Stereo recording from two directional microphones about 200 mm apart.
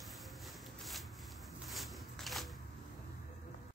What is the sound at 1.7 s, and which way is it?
Walk, centre (ahead or behind).